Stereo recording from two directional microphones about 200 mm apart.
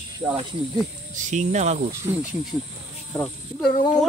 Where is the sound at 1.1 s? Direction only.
35° right (ahead or behind).